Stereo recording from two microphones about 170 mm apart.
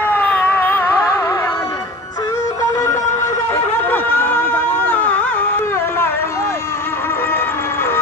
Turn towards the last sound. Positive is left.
turn(degrees=15)  # may be behind; listen again after turning